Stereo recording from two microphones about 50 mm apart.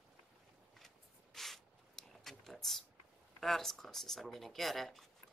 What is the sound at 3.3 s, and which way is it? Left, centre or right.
Speech, centre.